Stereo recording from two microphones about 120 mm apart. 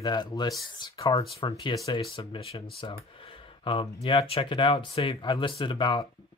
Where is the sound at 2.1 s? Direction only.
50° left (ahead or behind).